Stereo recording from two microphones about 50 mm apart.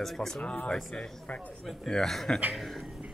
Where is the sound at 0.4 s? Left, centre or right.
Left.